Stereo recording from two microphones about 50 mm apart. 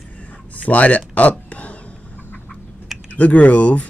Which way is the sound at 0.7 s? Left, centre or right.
Left.